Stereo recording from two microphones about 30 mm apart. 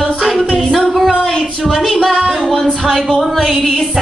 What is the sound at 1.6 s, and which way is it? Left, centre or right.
Music, centre.